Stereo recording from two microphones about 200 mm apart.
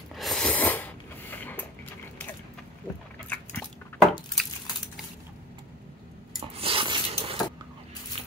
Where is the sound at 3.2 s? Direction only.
10° left (ahead or behind).